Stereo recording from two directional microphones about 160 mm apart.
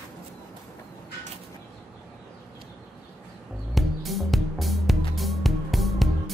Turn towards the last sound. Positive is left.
turn(degrees=0)  # may be behind; listen again after turning